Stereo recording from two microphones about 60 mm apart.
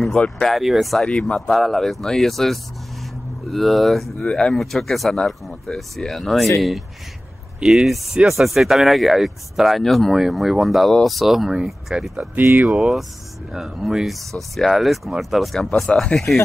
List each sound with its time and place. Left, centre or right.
0.4 s speech: centre
1.0 s speech: centre
7.6 s speech: centre
12.2 s speech: right
12.6 s speech: centre